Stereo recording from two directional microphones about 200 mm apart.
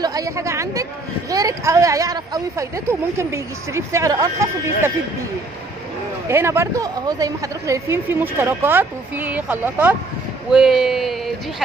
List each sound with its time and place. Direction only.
0.0 s a woman's voice: 20° right (ahead or behind)
6.2 s a woman's voice: 15° right (ahead or behind)